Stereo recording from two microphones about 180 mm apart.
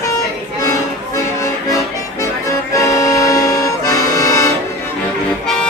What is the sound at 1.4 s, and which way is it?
Accordion, 15° left (ahead or behind).